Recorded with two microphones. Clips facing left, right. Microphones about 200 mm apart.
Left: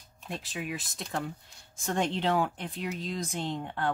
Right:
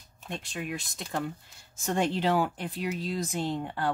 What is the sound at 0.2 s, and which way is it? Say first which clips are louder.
Speech: right 1 dB; centre (ahead or behind).